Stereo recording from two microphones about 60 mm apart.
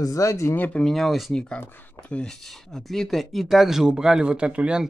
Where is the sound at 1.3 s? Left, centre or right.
Centre.